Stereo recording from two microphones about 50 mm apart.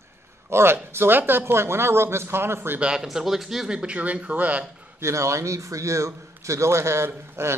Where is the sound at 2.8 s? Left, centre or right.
Centre.